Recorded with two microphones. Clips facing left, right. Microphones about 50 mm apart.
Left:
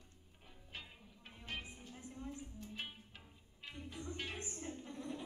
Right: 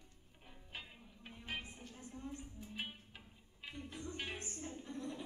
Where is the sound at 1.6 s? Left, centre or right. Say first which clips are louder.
Even; centre.